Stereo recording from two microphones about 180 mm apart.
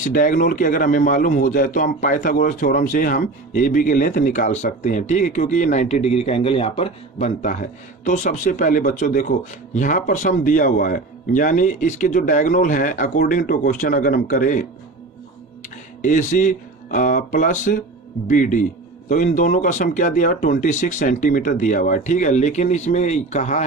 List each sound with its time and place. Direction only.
0.0 s a man's voice: 45° left (ahead or behind)
16.0 s a man's voice: 45° left (ahead or behind)